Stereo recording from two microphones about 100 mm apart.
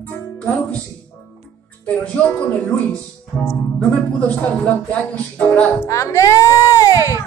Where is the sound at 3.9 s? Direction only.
15° left (ahead or behind).